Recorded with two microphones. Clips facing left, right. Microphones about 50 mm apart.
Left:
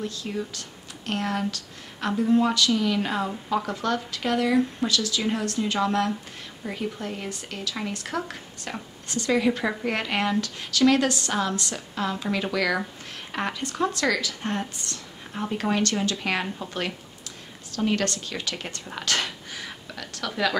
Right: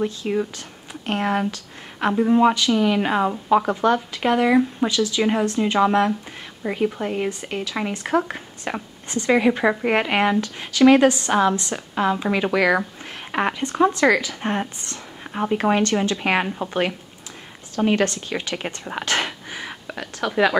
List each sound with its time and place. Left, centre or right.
0.0 s speech: right
3.8 s a woman's voice: right
17.7 s a woman's voice: right
19.0 s a sound: right